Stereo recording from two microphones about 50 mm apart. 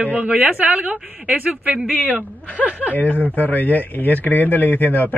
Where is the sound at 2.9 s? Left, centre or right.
Left.